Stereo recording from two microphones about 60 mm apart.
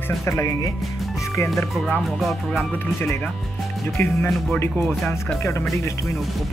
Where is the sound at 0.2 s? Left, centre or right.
Left.